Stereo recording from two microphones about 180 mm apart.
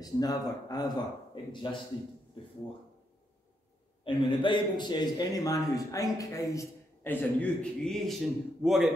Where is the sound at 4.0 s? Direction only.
30° left (ahead or behind).